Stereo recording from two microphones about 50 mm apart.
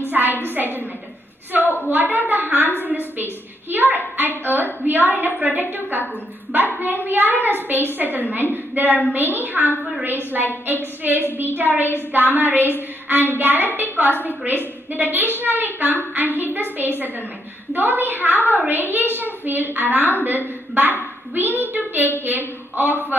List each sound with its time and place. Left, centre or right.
0.1 s a woman's voice: right
7.1 s a woman's voice: right